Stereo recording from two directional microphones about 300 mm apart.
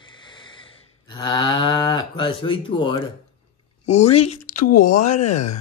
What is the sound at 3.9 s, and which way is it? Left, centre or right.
Speech, left.